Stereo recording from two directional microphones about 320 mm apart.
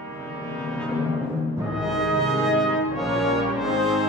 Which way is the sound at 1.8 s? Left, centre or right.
Centre.